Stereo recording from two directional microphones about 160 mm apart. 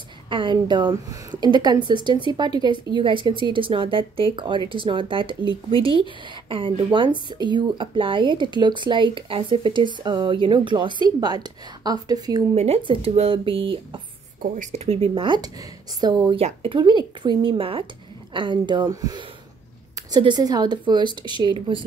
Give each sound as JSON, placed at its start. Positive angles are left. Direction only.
{"t": 0.3, "sound": "speech", "side_deg": -30}
{"t": 12.5, "sound": "speech", "side_deg": -40}